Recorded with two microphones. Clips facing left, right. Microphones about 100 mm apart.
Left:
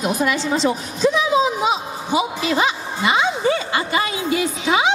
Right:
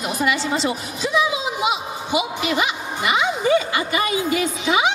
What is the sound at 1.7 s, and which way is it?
A woman's voice, 35° left (ahead or behind).